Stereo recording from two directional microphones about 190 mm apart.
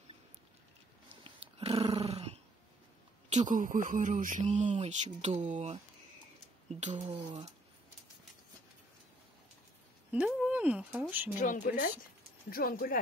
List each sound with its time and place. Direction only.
1.2 s dog: 30° right (ahead or behind)
3.3 s speech: 40° right (ahead or behind)
10.1 s speech: 5° right (ahead or behind)
11.3 s speech: 45° left (ahead or behind)